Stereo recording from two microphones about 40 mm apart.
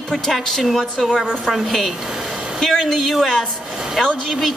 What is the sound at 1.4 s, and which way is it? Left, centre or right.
Speech, centre.